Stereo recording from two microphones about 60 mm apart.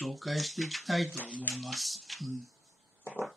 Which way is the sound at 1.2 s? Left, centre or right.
Left.